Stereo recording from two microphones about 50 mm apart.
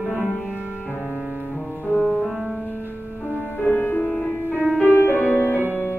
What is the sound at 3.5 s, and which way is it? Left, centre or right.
Music, left.